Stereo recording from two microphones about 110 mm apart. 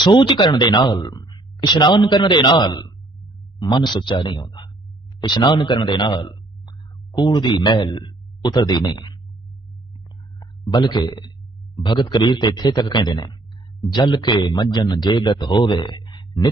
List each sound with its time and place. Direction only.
0.0 s a man's voice: 45° left (ahead or behind)
10.4 s a man's voice: 40° left (ahead or behind)